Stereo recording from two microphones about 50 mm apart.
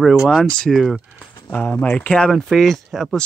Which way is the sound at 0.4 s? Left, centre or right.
Centre.